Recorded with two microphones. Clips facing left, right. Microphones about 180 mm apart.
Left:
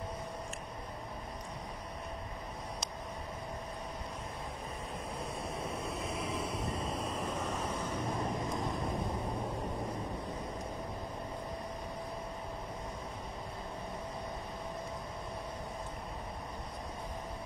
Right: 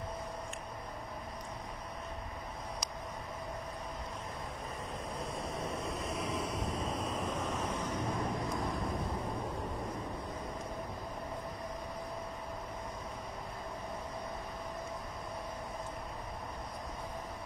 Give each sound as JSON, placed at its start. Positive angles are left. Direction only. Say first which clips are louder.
{"t": 5.6, "sound": "vehicle", "louder": "right 1 dB", "side_deg": 30}
{"t": 5.9, "sound": "vehicle", "louder": "even", "side_deg": 5}
{"t": 6.9, "sound": "waves", "louder": "even", "side_deg": 0}